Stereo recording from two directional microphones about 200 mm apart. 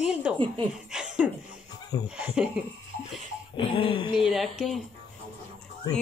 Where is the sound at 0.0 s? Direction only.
5° right (ahead or behind).